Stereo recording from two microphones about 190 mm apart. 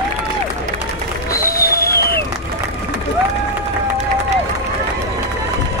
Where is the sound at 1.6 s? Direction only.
50° left (ahead or behind).